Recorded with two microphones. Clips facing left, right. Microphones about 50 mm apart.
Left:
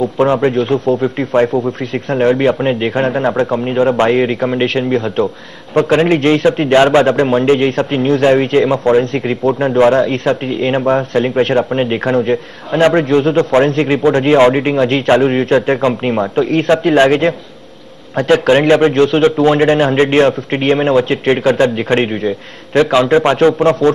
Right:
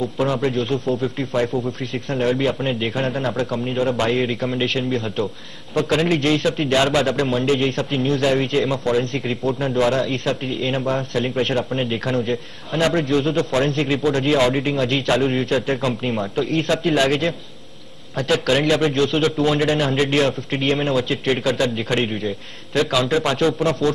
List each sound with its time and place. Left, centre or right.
0.0 s a man's voice: left